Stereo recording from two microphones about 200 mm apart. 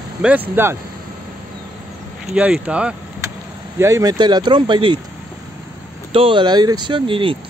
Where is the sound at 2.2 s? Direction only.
5° right (ahead or behind).